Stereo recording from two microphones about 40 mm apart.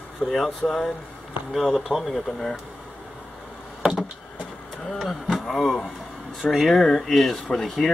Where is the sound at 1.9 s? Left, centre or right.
Right.